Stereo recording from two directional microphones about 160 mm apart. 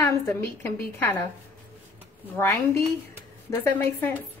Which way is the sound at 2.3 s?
15° left (ahead or behind).